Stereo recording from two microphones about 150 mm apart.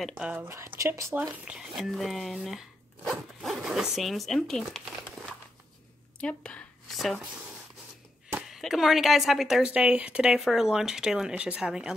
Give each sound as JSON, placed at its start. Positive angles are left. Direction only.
{"t": 0.2, "sound": "a woman's voice", "side_deg": -10}